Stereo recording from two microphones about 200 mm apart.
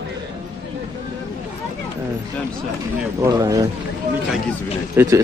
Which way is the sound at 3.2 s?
15° right (ahead or behind).